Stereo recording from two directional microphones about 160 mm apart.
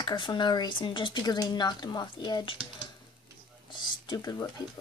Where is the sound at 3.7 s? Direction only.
30° left (ahead or behind).